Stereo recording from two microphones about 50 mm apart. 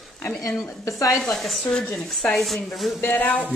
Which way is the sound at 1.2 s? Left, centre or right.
Centre.